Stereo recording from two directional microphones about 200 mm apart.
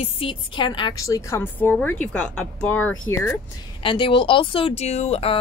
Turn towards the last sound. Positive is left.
turn(degrees=30)  # may be behind; listen again after turning